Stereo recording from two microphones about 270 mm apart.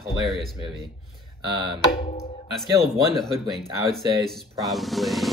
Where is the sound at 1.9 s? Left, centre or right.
Left.